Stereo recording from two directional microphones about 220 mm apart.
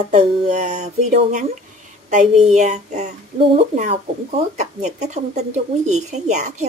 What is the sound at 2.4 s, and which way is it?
A woman's voice, 35° right (ahead or behind).